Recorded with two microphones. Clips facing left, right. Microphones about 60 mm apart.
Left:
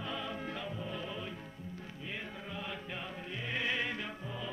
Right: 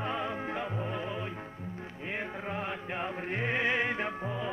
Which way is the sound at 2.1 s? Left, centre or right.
Right.